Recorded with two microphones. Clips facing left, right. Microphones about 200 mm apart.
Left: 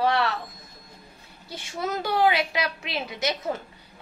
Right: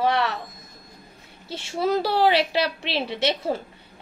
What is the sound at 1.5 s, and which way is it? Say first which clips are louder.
A woman's voice: right 7 dB; 30° right (ahead or behind).